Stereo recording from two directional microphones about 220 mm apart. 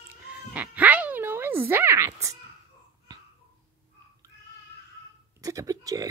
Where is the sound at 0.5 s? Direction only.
5° right (ahead or behind).